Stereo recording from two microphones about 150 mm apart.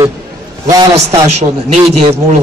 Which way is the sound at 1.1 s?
45° right (ahead or behind).